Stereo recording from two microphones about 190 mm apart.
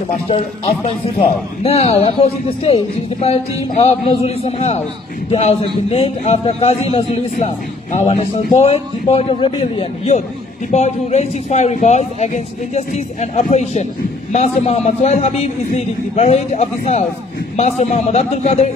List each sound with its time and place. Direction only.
0.3 s speech: 30° left (ahead or behind)